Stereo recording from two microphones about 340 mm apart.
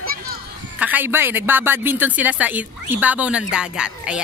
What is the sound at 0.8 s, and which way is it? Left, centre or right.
A woman's voice, centre.